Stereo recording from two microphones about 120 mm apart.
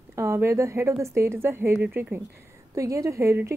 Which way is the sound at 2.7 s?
25° right (ahead or behind).